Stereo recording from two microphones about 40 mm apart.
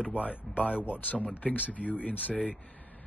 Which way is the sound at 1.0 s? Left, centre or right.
Left.